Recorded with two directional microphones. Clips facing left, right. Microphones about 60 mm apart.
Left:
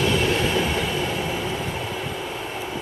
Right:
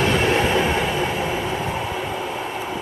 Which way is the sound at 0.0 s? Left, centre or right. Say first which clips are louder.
Right 3 dB; right.